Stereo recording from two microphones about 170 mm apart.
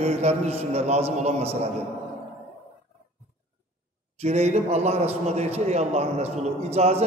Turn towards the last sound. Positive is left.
turn(degrees=-40)  # may be behind; listen again after turning